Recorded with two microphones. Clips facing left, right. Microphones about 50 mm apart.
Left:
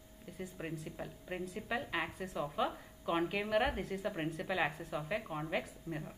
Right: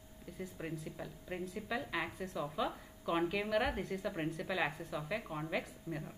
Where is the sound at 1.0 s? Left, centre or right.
Left.